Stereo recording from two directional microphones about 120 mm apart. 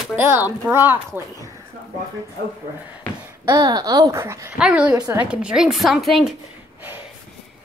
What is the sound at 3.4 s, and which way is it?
Speech, 35° right (ahead or behind).